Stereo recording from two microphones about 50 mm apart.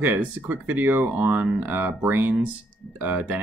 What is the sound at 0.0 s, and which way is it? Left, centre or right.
Speech, right.